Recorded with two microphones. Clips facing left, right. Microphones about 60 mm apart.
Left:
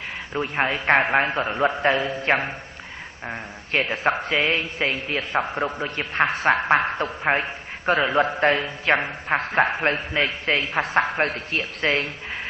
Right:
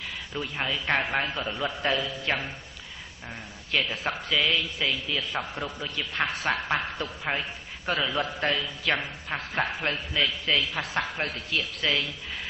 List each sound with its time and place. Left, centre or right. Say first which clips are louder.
0.3 s a man's voice: left 8 dB; left